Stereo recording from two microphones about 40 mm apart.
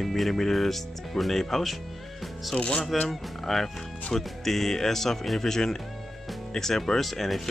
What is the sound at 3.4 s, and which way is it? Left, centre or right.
Speech, centre.